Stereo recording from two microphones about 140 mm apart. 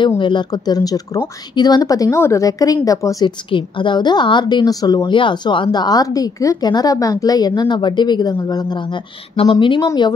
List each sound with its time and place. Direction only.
0.2 s a woman's voice: 35° left (ahead or behind)
9.4 s a woman's voice: 40° left (ahead or behind)